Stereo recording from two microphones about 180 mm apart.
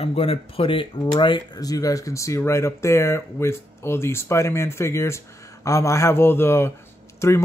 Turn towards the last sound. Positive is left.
turn(degrees=15)  # may be behind; listen again after turning